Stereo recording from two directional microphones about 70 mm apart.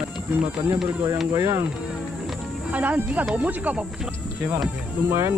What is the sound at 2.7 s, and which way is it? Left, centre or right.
Speech, right.